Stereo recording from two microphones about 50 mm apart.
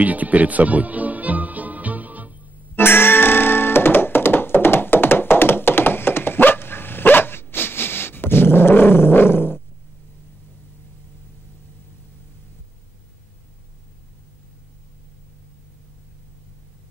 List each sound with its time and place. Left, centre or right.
0.0 s music: right
2.7 s music: left